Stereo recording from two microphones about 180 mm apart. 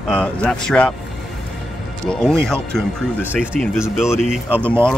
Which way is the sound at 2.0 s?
5° left (ahead or behind).